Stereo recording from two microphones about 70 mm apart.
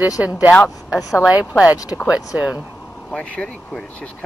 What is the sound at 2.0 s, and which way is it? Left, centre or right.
Speech, centre.